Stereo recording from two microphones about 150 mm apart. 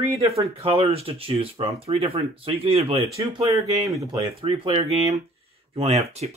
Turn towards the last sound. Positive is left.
turn(degrees=-45)  # may be behind; listen again after turning